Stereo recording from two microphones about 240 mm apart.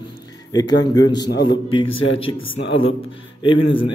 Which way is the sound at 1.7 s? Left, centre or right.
Left.